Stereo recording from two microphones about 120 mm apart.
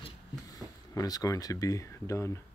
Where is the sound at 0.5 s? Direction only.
30° left (ahead or behind).